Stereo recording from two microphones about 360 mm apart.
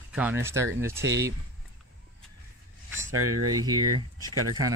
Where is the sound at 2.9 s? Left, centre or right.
Centre.